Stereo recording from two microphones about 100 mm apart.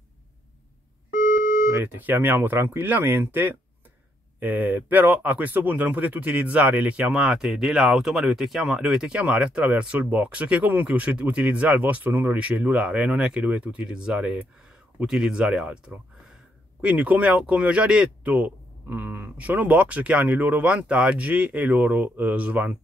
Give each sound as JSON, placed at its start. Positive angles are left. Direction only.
{"t": 1.7, "sound": "speech", "side_deg": -20}
{"t": 16.8, "sound": "speech", "side_deg": -15}